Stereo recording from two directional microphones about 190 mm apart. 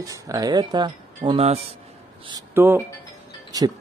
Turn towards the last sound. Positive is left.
turn(degrees=-20)  # may be behind; listen again after turning